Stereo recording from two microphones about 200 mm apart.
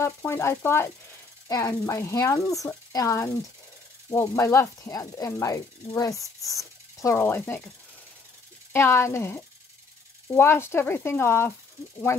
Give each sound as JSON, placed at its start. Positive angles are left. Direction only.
{"t": 0.0, "sound": "speech", "side_deg": 10}
{"t": 8.7, "sound": "speech", "side_deg": 10}